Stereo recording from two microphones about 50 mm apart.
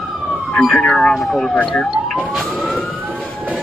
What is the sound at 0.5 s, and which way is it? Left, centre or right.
Speech, centre.